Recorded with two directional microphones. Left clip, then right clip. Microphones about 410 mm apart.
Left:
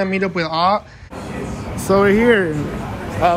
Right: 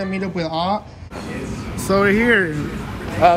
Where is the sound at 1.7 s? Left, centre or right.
Centre.